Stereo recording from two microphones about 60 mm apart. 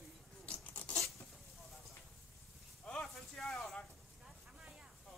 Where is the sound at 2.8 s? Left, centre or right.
Centre.